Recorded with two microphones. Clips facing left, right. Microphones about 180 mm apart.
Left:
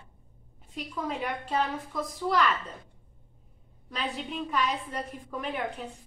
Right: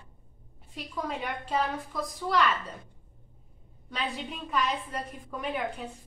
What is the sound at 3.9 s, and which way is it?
A woman's voice, centre (ahead or behind).